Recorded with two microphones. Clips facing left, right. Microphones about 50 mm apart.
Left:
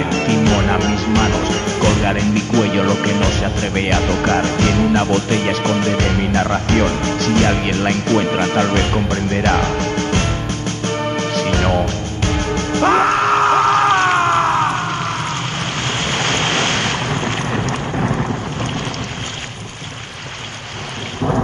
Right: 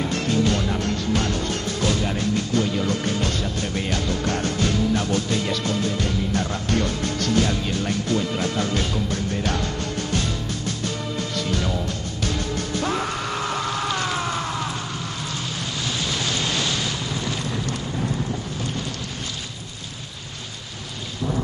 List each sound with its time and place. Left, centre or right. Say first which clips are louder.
0.0 s music: left 6 dB; left
15.8 s waves: left 6 dB; left